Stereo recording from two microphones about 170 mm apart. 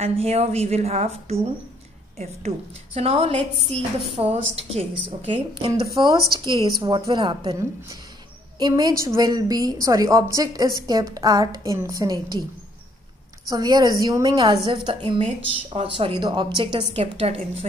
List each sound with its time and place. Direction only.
0.0 s a woman's voice: 35° right (ahead or behind)
13.5 s a woman's voice: 20° right (ahead or behind)